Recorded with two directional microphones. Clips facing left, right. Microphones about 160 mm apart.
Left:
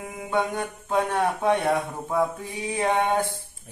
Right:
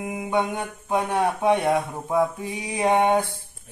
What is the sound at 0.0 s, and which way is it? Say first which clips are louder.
Speech: right 2 dB; 15° right (ahead or behind).